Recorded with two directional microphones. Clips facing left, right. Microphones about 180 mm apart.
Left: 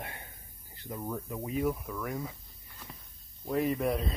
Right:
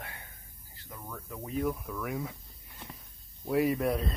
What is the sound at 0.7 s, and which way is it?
Speech, 25° left (ahead or behind).